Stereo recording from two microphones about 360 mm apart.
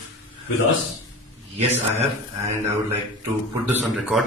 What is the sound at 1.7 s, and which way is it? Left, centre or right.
Speech, centre.